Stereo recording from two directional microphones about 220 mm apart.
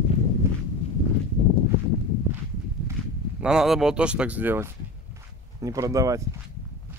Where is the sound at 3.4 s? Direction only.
Centre (ahead or behind).